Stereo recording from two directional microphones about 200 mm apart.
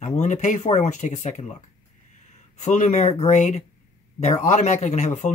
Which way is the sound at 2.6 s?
35° left (ahead or behind).